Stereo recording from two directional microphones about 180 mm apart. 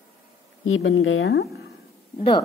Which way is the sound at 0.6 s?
90° left.